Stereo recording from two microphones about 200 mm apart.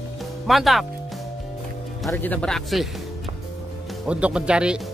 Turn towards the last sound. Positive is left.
turn(degrees=-5)  # may be behind; listen again after turning